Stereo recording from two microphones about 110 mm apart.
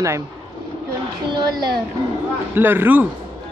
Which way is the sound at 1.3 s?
40° right (ahead or behind).